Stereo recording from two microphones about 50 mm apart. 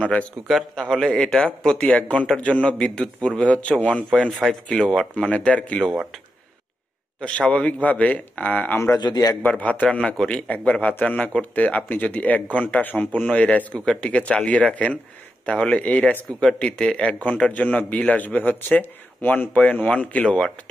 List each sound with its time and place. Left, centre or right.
0.5 s speech: centre
0.8 s a man's voice: centre
1.9 s speech: left
4.1 s a man's voice: centre
5.3 s speech: left
7.2 s speech: left
8.7 s speech: left
9.4 s speech: left
9.9 s a man's voice: centre
10.5 s speech: left